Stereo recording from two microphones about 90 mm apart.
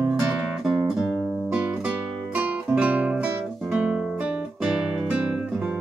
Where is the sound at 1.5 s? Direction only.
15° right (ahead or behind).